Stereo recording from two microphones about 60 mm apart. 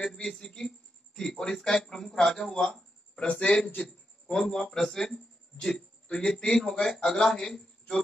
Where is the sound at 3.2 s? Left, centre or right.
Left.